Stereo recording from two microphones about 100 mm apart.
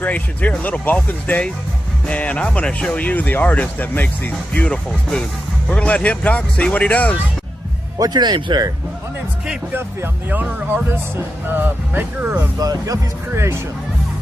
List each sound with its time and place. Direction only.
0.0 s speech: 15° left (ahead or behind)
8.0 s speech: 45° right (ahead or behind)
10.3 s speech: 20° right (ahead or behind)
12.5 s speech: 35° right (ahead or behind)
13.3 s speech: 25° right (ahead or behind)